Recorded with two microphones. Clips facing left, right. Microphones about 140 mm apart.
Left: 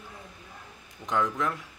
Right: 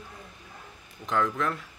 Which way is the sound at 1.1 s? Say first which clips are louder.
Right 1 dB; 15° left (ahead or behind).